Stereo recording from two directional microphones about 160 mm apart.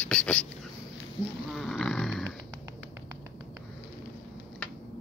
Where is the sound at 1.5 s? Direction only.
5° left (ahead or behind).